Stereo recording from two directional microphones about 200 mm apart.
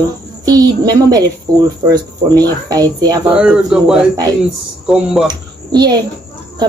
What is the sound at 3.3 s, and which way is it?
Speech, 5° right (ahead or behind).